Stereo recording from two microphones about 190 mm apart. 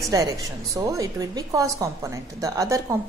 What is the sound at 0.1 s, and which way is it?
A woman's voice, 20° right (ahead or behind).